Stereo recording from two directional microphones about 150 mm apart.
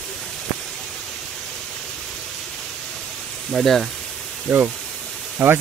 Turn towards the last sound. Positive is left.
turn(degrees=-15)  # may be behind; listen again after turning